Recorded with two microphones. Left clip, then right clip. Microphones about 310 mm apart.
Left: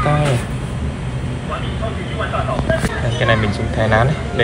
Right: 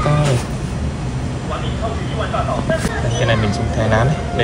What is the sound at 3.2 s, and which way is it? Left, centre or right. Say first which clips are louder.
Speech: left 2 dB; centre.